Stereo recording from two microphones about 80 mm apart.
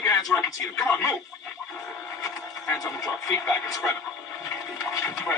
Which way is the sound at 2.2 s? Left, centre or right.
Left.